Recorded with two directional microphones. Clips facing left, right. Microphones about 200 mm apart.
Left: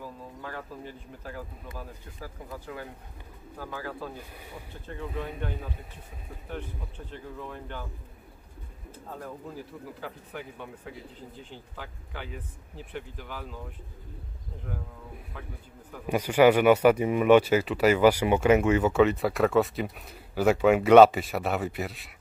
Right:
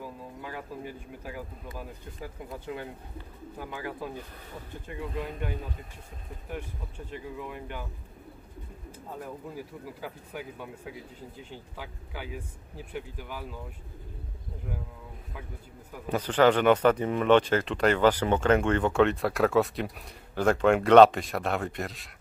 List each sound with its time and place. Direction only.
0.0 s speech: 10° right (ahead or behind)
5.1 s speech: 5° left (ahead or behind)
7.1 s speech: 10° right (ahead or behind)
9.9 s speech: 10° right (ahead or behind)
16.1 s speech: 10° left (ahead or behind)